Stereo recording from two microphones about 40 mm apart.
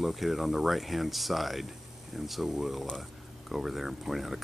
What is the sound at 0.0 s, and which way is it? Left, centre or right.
Speech, centre.